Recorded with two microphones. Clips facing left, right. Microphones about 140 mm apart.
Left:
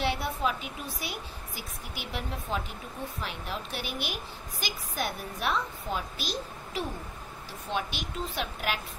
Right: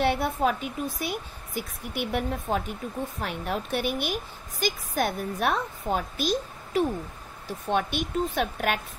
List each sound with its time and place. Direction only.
0.0 s a woman's voice: 50° right (ahead or behind)